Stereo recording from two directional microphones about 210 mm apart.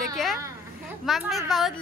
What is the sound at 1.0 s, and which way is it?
Speech, centre (ahead or behind).